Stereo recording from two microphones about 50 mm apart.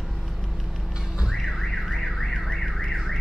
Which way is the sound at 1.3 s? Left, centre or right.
Centre.